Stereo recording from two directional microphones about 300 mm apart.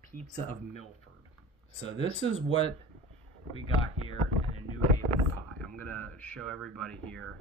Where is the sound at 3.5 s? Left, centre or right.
Centre.